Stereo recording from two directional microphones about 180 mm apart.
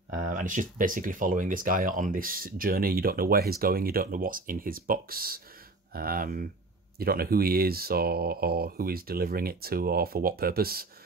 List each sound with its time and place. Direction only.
0.1 s speech: 45° right (ahead or behind)